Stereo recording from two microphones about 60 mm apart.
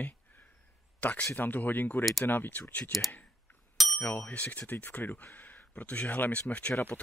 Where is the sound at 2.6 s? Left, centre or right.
Centre.